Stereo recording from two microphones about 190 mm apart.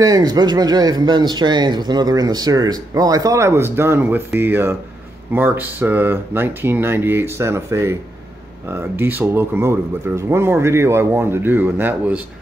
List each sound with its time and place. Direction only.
0.0 s speech: 20° right (ahead or behind)